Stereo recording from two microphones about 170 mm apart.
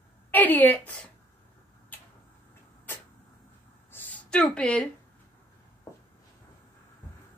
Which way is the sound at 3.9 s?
10° left (ahead or behind).